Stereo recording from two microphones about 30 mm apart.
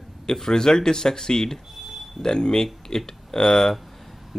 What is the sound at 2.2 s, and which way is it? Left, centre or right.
Speech, left.